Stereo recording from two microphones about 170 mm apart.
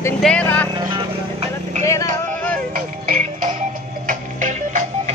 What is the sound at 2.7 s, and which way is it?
Music, 50° right (ahead or behind).